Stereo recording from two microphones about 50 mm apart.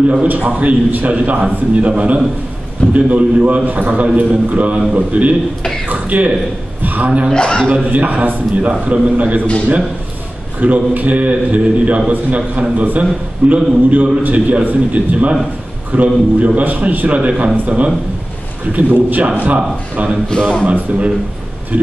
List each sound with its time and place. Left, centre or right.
0.3 s a man's voice: right
6.8 s a sound: right
7.3 s a man's voice: centre
7.7 s a man's voice: right
10.6 s a man's voice: right